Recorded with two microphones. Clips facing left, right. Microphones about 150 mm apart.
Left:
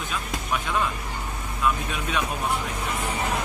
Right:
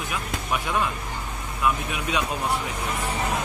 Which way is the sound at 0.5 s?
10° right (ahead or behind).